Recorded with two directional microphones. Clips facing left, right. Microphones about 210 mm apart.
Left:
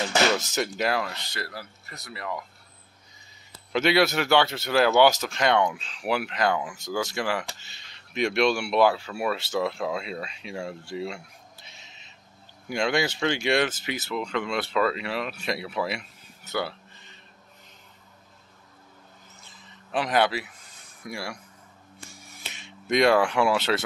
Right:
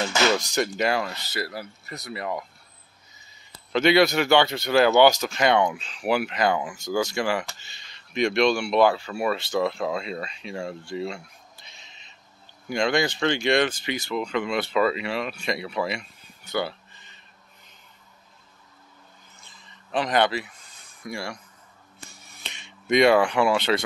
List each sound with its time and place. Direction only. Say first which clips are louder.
0.4 s speech: right 3 dB; 5° left (ahead or behind)
1.5 s speech: right 5 dB; 20° right (ahead or behind)
3.7 s speech: right 3 dB; 5° left (ahead or behind)
19.4 s a sound: left 2 dB; 5° left (ahead or behind)
21.0 s speech: right 2 dB; 5° left (ahead or behind)
22.1 s a sound: right 1 dB; 10° left (ahead or behind)